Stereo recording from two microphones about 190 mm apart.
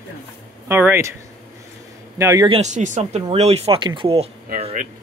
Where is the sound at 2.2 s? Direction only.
15° right (ahead or behind).